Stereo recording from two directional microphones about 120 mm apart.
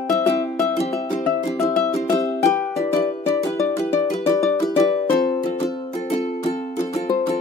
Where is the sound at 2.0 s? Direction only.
25° left (ahead or behind).